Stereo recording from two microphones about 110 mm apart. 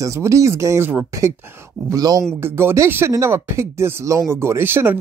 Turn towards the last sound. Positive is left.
turn(degrees=-20)  # may be behind; listen again after turning